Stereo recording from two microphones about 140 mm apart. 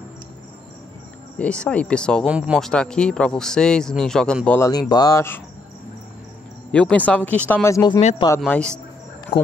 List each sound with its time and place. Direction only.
1.4 s speech: 10° left (ahead or behind)
2.2 s speech: 10° right (ahead or behind)
2.6 s a man's voice: 5° left (ahead or behind)
4.6 s speech: 30° left (ahead or behind)
6.7 s speech: 10° left (ahead or behind)
7.7 s speech: 30° left (ahead or behind)
8.4 s speech: 5° left (ahead or behind)
9.3 s speech: 30° left (ahead or behind)